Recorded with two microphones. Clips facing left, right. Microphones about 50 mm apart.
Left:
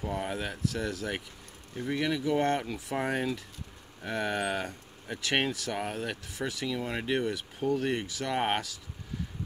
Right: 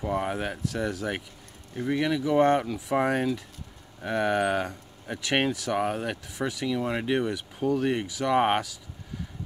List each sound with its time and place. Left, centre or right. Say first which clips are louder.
0.0 s speech: right 5 dB; centre